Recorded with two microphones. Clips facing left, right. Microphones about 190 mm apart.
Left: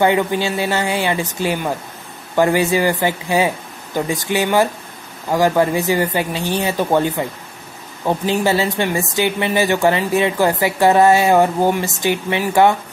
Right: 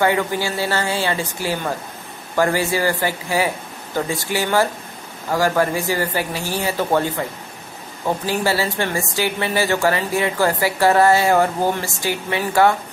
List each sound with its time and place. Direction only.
0.0 s a woman's voice: 20° left (ahead or behind)
8.3 s a woman's voice: 20° left (ahead or behind)